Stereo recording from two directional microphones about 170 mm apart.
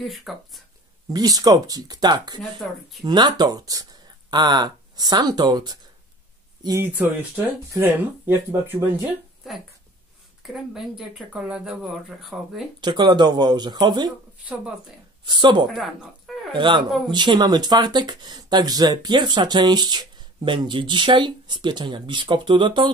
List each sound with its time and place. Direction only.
0.0 s speech: centre (ahead or behind)
1.1 s speech: 20° right (ahead or behind)
6.9 s speech: 10° right (ahead or behind)
10.4 s speech: 5° right (ahead or behind)
12.8 s speech: 25° right (ahead or behind)
14.4 s speech: 10° right (ahead or behind)
15.2 s speech: 25° right (ahead or behind)
15.7 s speech: centre (ahead or behind)
16.5 s speech: 30° right (ahead or behind)